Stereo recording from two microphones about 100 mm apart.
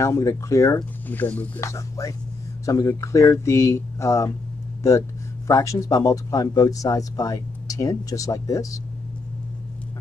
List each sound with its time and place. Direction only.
0.0 s speech: 30° left (ahead or behind)
1.0 s speech: 20° left (ahead or behind)
1.6 s speech: 30° left (ahead or behind)
5.5 s speech: 30° left (ahead or behind)